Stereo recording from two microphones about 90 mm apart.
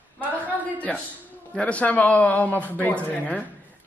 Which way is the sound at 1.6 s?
15° left (ahead or behind).